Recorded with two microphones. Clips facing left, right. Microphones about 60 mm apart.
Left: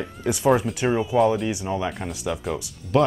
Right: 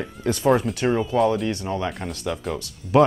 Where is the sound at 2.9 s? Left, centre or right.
Centre.